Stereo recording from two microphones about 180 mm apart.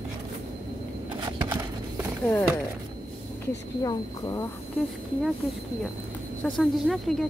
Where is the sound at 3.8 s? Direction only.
20° left (ahead or behind).